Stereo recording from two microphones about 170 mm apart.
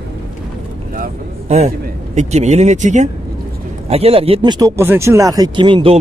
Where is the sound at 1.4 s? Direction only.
40° right (ahead or behind).